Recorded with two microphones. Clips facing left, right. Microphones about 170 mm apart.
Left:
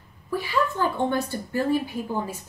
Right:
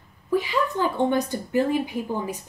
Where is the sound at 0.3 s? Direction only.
15° right (ahead or behind).